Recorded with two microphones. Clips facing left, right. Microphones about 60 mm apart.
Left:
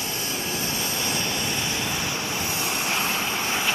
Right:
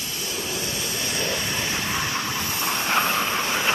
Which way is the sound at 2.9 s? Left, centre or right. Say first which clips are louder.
Right 7 dB; right.